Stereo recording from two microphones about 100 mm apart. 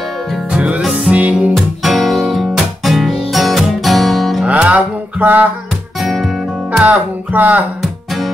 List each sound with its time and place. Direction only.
0.5 s music: 10° right (ahead or behind)
1.5 s music: centre (ahead or behind)
4.5 s music: 15° right (ahead or behind)
6.7 s speech: 15° right (ahead or behind)